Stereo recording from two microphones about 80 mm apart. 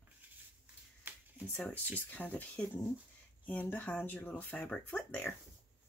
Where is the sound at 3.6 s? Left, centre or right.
Left.